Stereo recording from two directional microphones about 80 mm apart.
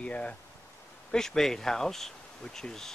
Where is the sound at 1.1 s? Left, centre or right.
Centre.